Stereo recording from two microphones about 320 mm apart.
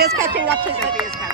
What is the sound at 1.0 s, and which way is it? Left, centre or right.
Run, centre.